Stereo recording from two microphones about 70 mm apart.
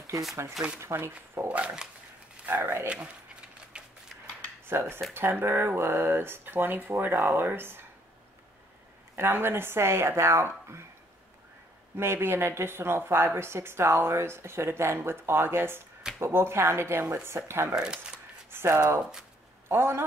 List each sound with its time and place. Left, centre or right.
0.7 s speech: right
1.5 s dog: centre
2.6 s speech: right
3.8 s a sound: centre
4.6 s speech: right
9.1 s speech: right
12.0 s speech: right
17.7 s speech: centre
18.5 s speech: right